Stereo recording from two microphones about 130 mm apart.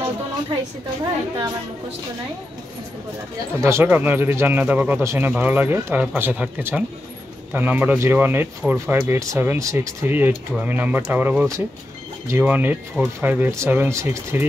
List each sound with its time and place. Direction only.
3.6 s speech: 15° right (ahead or behind)